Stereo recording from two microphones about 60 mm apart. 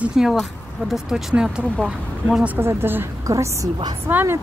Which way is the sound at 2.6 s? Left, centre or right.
Right.